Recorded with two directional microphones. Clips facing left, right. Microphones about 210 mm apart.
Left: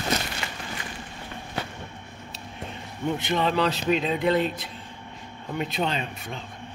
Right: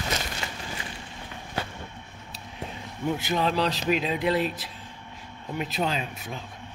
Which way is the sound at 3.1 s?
Centre (ahead or behind).